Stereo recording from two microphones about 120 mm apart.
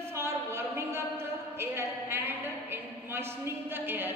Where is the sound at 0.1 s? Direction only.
20° right (ahead or behind).